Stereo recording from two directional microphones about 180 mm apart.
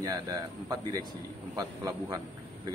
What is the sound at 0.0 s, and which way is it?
Speech, 20° right (ahead or behind).